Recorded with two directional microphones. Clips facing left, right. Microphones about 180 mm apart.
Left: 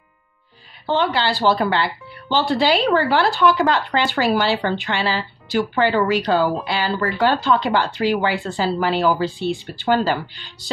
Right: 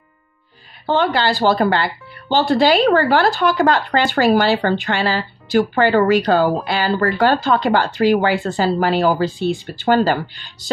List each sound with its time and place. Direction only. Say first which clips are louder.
0.8 s speech: right 3 dB; 45° right (ahead or behind)